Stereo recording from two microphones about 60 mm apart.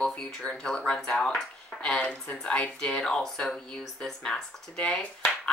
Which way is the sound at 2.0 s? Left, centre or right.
Left.